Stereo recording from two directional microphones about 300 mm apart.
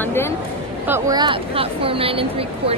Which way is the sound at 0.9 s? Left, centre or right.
Centre.